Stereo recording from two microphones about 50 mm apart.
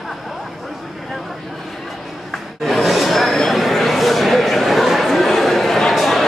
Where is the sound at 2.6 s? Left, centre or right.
Centre.